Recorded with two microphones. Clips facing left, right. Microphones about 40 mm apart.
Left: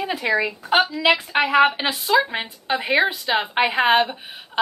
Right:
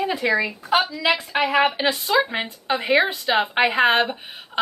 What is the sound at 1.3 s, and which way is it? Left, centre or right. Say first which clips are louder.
Speech: left 1 dB; centre.